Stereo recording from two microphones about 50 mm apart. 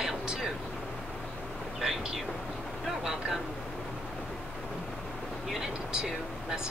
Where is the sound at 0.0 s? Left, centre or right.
Centre.